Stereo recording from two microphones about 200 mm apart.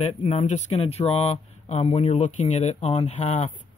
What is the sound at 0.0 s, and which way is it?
Speech, 30° left (ahead or behind).